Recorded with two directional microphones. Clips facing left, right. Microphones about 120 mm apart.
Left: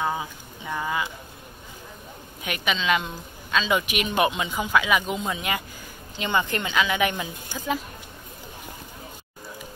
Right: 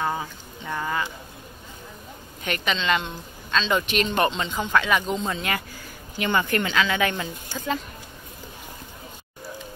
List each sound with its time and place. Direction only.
0.0 s speech: 10° left (ahead or behind)
2.4 s a woman's voice: 5° left (ahead or behind)